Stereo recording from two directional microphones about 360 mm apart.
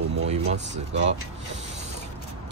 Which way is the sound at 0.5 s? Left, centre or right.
Right.